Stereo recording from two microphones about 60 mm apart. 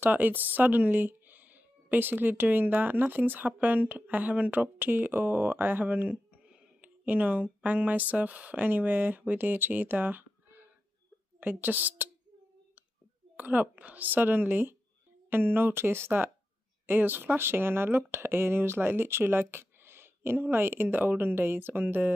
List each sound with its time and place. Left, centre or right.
0.0 s a woman's voice: right
13.4 s speech: right